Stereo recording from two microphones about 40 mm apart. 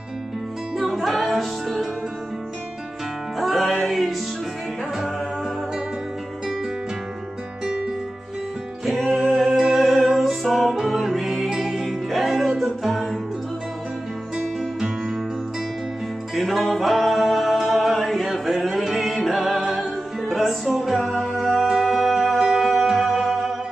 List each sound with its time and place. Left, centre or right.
0.7 s music: centre
3.3 s music: centre
7.6 s music: centre
8.8 s music: centre
16.3 s music: centre